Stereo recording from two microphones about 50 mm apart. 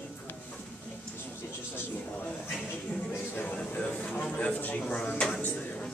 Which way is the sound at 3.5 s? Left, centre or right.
Left.